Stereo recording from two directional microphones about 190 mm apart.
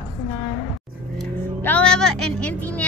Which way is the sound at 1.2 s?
5° left (ahead or behind).